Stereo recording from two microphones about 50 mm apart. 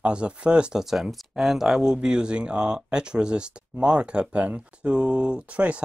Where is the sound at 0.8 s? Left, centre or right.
Centre.